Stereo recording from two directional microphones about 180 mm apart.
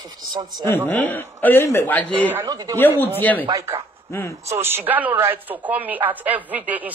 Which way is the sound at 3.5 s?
20° right (ahead or behind).